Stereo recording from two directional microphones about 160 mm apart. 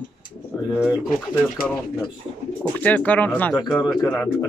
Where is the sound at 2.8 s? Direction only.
10° left (ahead or behind).